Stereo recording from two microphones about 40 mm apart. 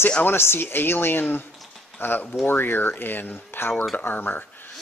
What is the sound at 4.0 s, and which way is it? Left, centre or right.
Speech, left.